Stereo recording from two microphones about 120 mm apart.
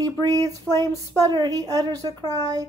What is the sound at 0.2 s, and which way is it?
Speech, 30° right (ahead or behind).